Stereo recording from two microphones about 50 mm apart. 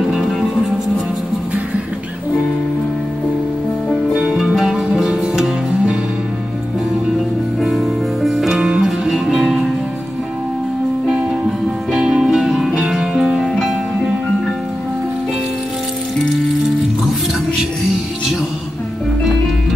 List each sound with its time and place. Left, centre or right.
0.0 s music: centre
4.2 s music: centre
4.6 s music: centre
7.2 s music: centre
11.9 s music: centre
12.2 s music: centre